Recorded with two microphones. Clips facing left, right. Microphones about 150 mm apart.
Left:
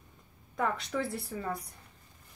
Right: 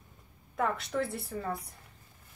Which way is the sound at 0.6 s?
Centre (ahead or behind).